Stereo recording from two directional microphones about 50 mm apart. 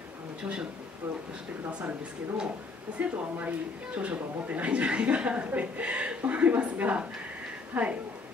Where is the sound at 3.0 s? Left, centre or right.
Right.